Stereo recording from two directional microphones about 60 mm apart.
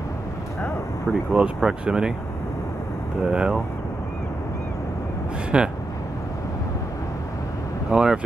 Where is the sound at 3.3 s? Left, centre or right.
Centre.